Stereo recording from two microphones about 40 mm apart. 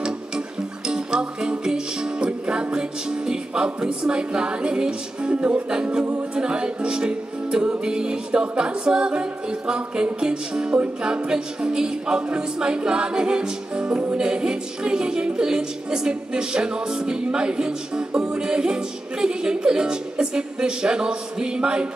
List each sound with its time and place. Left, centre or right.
0.8 s music: centre
6.3 s speech: right